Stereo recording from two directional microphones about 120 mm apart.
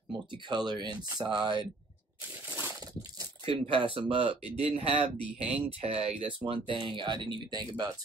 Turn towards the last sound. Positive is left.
turn(degrees=-35)  # may be behind; listen again after turning